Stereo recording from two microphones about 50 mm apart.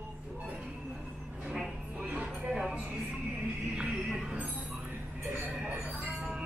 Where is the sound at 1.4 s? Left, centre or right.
Centre.